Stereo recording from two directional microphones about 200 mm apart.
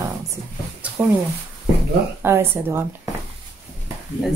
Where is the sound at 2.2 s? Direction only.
10° right (ahead or behind).